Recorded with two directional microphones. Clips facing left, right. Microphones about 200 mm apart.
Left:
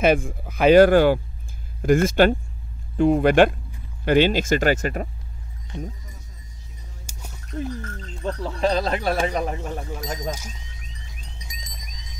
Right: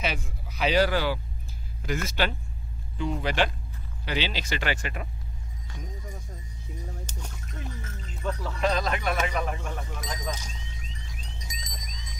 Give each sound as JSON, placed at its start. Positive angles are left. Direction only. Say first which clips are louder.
{"t": 0.0, "sound": "speech", "louder": "left 13 dB", "side_deg": 50}
{"t": 5.7, "sound": "speech", "louder": "left 11 dB", "side_deg": 25}
{"t": 7.1, "sound": "a sound", "louder": "right 1 dB", "side_deg": 10}
{"t": 7.7, "sound": "music", "louder": "left 8 dB", "side_deg": -5}
{"t": 8.2, "sound": "speech", "louder": "left 5 dB", "side_deg": 30}